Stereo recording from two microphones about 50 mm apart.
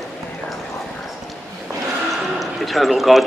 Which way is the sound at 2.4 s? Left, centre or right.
Centre.